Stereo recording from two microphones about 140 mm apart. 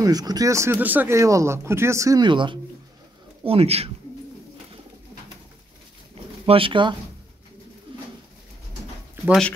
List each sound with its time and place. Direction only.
0.0 s speech: 25° right (ahead or behind)
3.4 s speech: 45° right (ahead or behind)
6.4 s speech: 40° right (ahead or behind)
9.1 s a sound: 5° right (ahead or behind)